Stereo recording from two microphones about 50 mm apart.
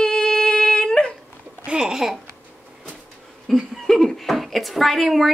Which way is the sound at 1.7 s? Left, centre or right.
Centre.